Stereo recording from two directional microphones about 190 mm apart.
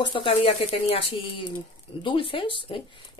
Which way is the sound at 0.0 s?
25° left (ahead or behind).